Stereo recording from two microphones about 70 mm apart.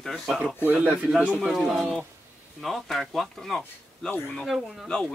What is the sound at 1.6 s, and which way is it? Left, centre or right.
Speech, centre.